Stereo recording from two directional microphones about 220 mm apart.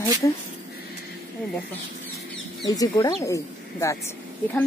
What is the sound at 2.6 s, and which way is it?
Speech, 15° left (ahead or behind).